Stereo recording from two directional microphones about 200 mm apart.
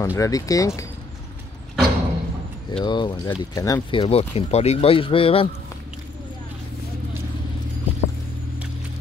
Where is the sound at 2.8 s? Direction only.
20° left (ahead or behind).